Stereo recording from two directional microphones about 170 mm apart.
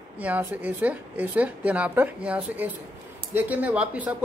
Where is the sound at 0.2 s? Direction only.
10° right (ahead or behind).